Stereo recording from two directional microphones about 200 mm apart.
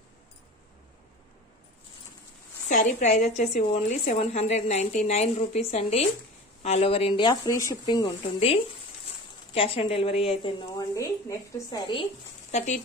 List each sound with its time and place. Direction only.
2.7 s a woman's voice: 40° left (ahead or behind); by 8.1 s 20° left (ahead or behind)
9.5 s speech: 30° left (ahead or behind)
11.0 s a woman's voice: 15° left (ahead or behind)
12.4 s speech: 35° left (ahead or behind)